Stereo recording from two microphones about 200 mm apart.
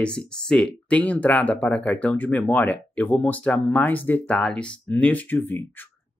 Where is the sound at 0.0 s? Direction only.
5° left (ahead or behind).